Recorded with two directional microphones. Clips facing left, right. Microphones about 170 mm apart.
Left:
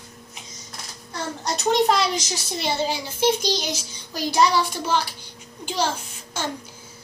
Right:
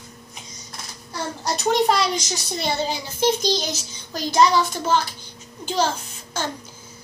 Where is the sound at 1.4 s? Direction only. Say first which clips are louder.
Even; centre (ahead or behind).